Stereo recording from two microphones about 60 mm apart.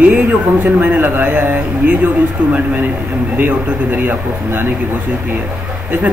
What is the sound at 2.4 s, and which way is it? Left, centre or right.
Speech, centre.